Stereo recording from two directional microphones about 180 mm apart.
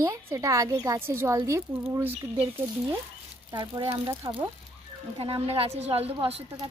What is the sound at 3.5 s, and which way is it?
Speech, 25° right (ahead or behind).